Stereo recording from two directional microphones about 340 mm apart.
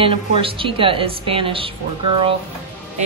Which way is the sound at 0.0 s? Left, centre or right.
Centre.